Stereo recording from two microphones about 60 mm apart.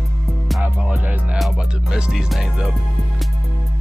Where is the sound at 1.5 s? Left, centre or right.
Centre.